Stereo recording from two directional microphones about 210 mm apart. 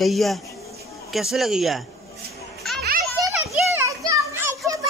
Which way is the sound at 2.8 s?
45° right (ahead or behind).